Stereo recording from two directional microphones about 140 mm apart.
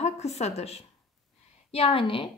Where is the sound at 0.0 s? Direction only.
50° left (ahead or behind).